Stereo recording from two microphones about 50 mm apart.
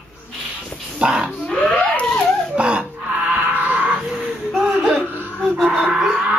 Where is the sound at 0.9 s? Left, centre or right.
Centre.